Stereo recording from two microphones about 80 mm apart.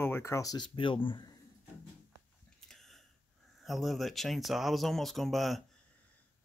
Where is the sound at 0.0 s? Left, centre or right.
Left.